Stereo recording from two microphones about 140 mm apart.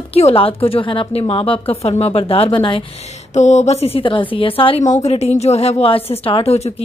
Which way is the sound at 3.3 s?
55° left (ahead or behind).